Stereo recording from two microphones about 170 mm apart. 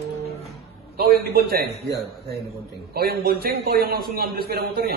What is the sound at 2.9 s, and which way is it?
A man's voice, 65° right (ahead or behind).